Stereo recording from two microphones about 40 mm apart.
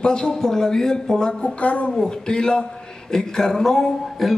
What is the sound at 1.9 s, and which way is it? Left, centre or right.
Speech, centre.